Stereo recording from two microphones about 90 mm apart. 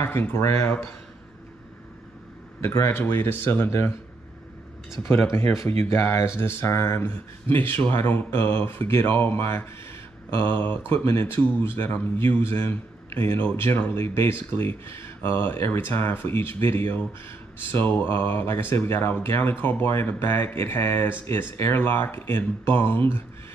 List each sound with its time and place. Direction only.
0.0 s speech: 25° left (ahead or behind)
2.6 s speech: 30° left (ahead or behind)
5.0 s speech: 30° left (ahead or behind)